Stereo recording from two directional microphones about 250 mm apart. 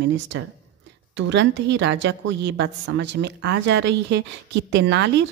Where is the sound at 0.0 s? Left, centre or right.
Right.